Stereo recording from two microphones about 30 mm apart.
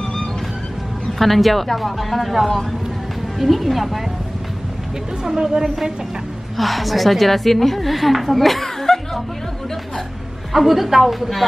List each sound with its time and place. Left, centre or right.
1.1 s a woman's voice: centre
5.2 s speech: centre
6.5 s a woman's voice: centre
8.8 s music: centre
10.5 s a woman's voice: centre